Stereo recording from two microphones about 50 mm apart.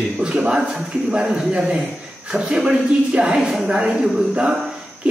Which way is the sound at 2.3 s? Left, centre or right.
Centre.